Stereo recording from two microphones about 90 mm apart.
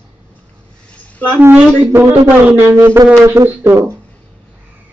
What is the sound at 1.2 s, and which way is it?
Speech, 20° right (ahead or behind).